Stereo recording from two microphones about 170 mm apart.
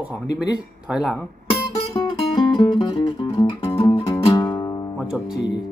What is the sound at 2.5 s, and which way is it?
Music, 30° left (ahead or behind).